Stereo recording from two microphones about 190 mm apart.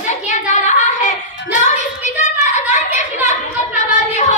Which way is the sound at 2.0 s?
40° left (ahead or behind).